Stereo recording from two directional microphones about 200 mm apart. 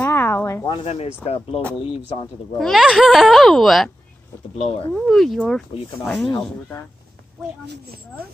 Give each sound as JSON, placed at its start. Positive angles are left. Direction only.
{"t": 0.0, "sound": "a sound", "side_deg": 10}
{"t": 0.7, "sound": "speech", "side_deg": 30}
{"t": 2.6, "sound": "a child's voice", "side_deg": 0}
{"t": 4.6, "sound": "speech", "side_deg": 30}
{"t": 4.9, "sound": "a child's voice", "side_deg": 0}